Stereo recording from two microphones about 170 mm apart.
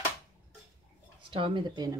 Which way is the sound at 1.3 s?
30° right (ahead or behind).